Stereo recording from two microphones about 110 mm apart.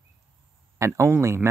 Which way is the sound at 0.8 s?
25° right (ahead or behind).